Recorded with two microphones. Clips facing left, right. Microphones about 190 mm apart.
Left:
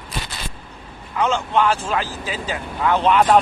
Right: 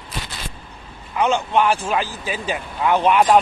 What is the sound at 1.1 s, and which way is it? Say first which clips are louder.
Speech: right 1 dB; 15° right (ahead or behind).